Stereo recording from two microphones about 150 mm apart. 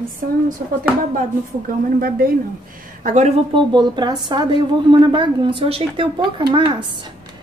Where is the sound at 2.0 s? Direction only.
75° right (ahead or behind).